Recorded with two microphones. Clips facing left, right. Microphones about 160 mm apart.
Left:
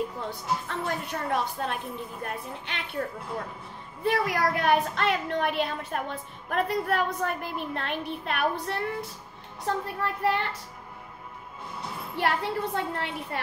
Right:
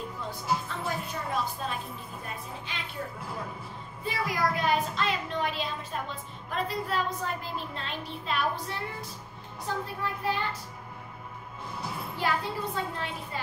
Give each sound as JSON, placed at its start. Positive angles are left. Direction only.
{"t": 0.7, "sound": "a woman's voice", "side_deg": 65}
{"t": 4.0, "sound": "a woman's voice", "side_deg": 65}
{"t": 9.8, "sound": "a woman's voice", "side_deg": 65}
{"t": 12.2, "sound": "a woman's voice", "side_deg": 65}